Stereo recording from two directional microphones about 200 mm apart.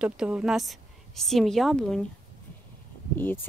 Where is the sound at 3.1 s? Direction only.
10° left (ahead or behind).